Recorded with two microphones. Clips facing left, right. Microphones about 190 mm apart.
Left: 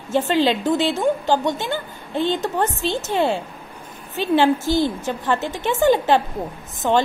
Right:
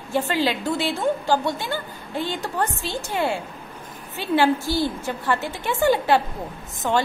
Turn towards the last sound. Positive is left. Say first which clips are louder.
# left 4 dB
turn(degrees=15)  # may be behind; listen again after turning